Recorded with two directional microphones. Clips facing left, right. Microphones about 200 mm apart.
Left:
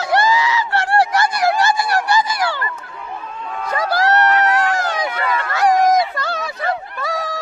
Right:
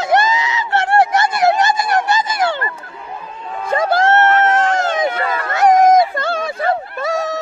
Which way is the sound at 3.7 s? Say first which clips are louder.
Right 3 dB; 25° right (ahead or behind).